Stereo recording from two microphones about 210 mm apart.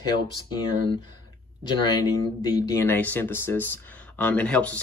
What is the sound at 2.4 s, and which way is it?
Speech, 15° left (ahead or behind).